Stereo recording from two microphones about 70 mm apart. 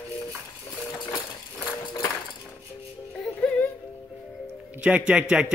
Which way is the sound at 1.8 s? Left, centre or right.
Left.